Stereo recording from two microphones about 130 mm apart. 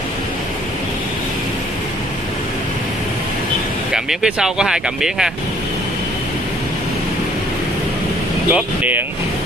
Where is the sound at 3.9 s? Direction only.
5° right (ahead or behind).